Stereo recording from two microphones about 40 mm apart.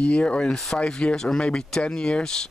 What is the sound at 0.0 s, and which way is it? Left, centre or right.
Speech, left.